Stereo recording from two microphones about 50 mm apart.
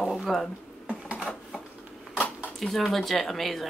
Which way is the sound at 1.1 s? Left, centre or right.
Centre.